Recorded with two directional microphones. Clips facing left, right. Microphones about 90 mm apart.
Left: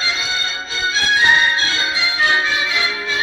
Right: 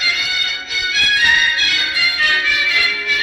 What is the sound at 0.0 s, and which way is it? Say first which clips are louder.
Music: even; 25° left (ahead or behind).